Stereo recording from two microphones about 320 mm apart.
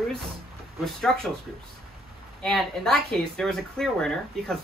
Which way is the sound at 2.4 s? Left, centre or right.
Centre.